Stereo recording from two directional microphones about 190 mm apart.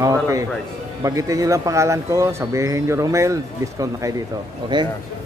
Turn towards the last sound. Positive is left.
turn(degrees=-25)  # may be behind; listen again after turning